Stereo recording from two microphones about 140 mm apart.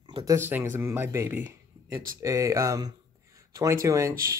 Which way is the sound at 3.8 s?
20° right (ahead or behind).